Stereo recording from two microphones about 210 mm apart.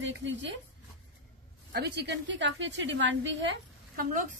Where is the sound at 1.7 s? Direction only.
55° right (ahead or behind).